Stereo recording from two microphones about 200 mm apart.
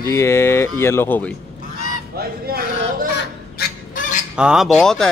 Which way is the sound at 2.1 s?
50° right (ahead or behind).